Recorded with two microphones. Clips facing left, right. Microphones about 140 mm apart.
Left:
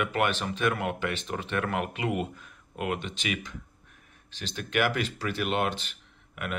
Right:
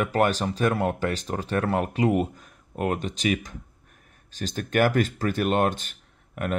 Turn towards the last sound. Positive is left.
turn(degrees=-45)  # may be behind; listen again after turning